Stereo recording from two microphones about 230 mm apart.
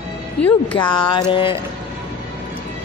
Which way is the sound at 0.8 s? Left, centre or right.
Centre.